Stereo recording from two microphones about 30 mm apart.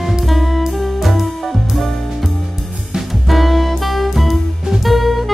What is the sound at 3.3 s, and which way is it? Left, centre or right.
Music, centre.